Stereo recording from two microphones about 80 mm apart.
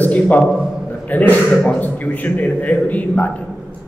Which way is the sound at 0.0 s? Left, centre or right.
Left.